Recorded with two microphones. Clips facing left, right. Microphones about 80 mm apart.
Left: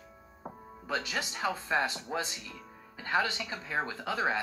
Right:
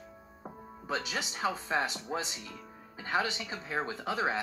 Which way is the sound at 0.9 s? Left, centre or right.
Right.